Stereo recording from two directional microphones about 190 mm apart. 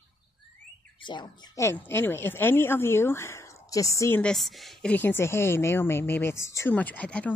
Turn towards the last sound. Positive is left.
turn(degrees=5)  # may be behind; listen again after turning